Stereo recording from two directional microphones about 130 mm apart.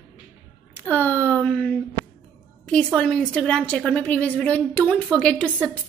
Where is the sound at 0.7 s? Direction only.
15° left (ahead or behind).